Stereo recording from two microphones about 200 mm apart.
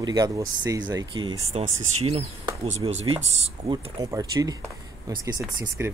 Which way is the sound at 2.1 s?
30° right (ahead or behind).